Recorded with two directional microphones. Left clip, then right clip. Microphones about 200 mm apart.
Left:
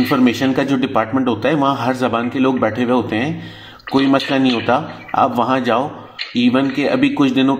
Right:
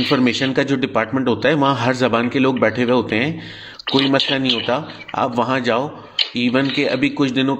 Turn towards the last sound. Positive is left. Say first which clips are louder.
# left 3 dB
turn(degrees=-30)  # may be behind; listen again after turning